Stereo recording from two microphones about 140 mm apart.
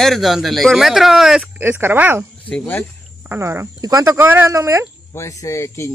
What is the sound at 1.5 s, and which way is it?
Speech, 15° right (ahead or behind).